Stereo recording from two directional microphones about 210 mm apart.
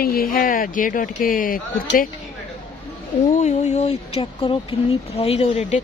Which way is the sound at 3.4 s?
35° left (ahead or behind).